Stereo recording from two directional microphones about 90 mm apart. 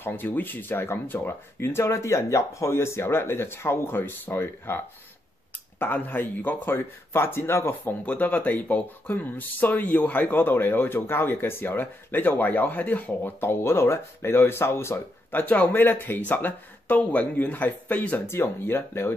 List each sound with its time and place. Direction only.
0.0 s speech: 20° left (ahead or behind)